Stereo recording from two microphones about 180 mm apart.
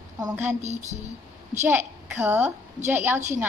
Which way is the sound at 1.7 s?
10° right (ahead or behind).